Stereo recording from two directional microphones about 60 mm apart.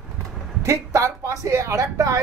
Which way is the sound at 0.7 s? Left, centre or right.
Right.